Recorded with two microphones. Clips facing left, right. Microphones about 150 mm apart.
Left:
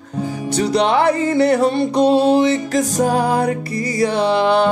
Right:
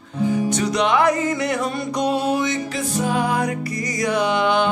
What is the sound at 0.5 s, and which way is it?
Music, 30° left (ahead or behind).